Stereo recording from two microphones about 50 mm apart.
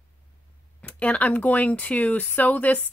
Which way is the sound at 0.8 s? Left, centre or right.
Left.